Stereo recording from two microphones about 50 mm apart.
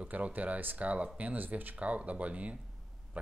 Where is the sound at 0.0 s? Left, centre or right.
Right.